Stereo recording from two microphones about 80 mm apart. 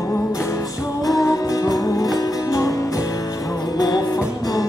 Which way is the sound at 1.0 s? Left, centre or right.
Left.